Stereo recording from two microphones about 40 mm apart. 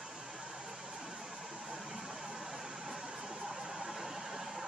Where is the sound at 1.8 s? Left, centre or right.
Centre.